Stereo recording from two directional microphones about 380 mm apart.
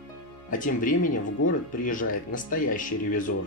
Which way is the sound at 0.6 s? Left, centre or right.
Left.